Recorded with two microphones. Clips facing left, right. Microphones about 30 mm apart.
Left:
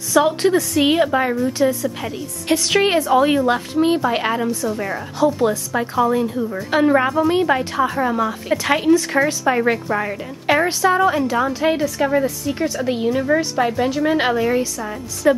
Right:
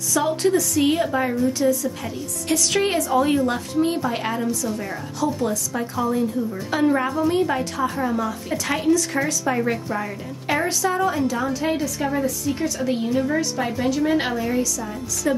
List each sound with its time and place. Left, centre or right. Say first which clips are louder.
0.1 s a woman's voice: left 4 dB; left
15.2 s a woman's voice: left 6 dB; left